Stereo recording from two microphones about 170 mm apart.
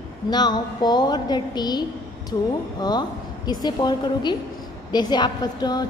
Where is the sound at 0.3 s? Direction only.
25° left (ahead or behind).